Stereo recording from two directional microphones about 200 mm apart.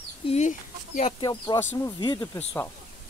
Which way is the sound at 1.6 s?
10° left (ahead or behind).